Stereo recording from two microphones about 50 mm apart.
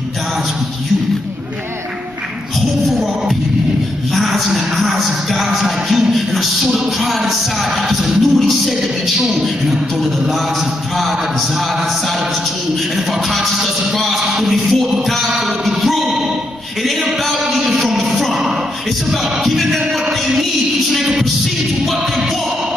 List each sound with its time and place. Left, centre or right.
2.9 s music: centre
12.9 s music: centre
16.8 s a sound: centre
19.0 s music: centre